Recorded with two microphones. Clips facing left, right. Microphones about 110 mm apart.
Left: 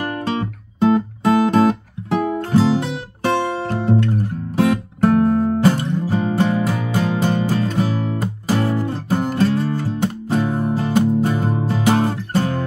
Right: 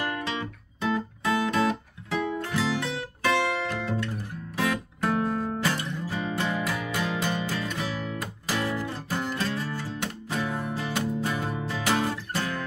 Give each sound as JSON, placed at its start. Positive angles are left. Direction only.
{"t": 0.0, "sound": "music", "side_deg": 40}